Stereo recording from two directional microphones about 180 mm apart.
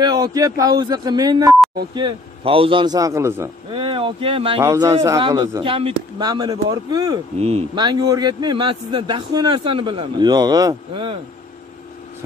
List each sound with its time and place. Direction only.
0.0 s a man's voice: 20° right (ahead or behind)
3.7 s a man's voice: 30° right (ahead or behind)
4.6 s a man's voice: 20° right (ahead or behind)
7.3 s speech: 35° right (ahead or behind)
7.8 s a man's voice: 20° right (ahead or behind)